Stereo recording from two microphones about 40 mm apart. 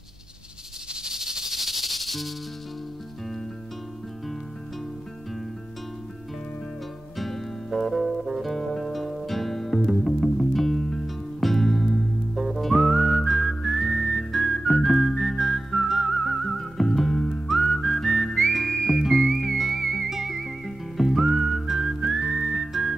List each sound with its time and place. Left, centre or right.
1.0 s music: centre
7.2 s music: centre
13.6 s whistling: centre
13.9 s whistling: centre
14.7 s whistling: centre
16.3 s whistling: centre
18.5 s music: centre
20.1 s whistling: centre